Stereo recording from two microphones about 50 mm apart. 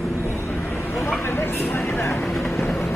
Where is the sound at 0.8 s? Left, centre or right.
Left.